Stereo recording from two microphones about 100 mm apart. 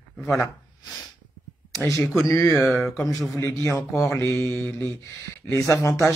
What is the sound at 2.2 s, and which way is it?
Speech, 30° left (ahead or behind).